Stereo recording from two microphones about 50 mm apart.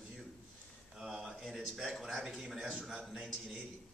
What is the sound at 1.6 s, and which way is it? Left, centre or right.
A man's voice, centre.